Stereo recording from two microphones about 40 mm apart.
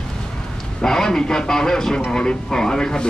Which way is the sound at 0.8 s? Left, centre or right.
Centre.